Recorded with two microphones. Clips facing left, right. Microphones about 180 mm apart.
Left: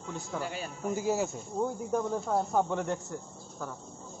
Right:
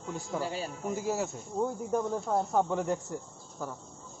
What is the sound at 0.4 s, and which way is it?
Speech, 35° right (ahead or behind).